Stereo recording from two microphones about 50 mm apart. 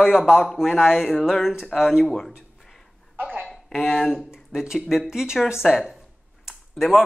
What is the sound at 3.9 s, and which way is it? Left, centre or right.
A man's voice, centre.